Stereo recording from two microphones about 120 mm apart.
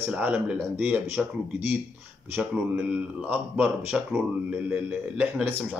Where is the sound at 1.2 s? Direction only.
5° right (ahead or behind).